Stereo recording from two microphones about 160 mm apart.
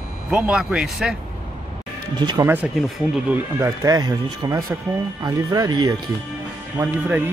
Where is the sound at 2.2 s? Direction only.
25° right (ahead or behind).